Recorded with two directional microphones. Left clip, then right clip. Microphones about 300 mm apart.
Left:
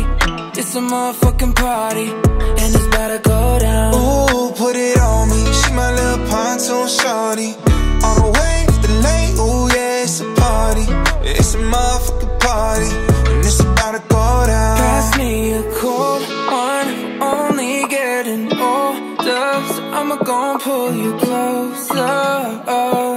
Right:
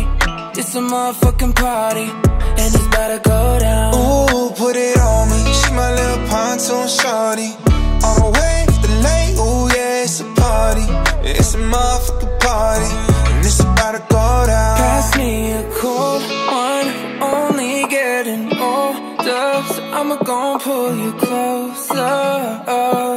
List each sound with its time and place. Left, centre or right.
0.7 s music: centre
20.8 s music: centre